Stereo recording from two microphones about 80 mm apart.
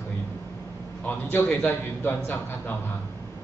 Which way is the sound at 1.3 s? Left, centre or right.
Left.